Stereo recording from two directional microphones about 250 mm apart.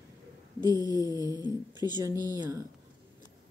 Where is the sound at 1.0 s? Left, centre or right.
Centre.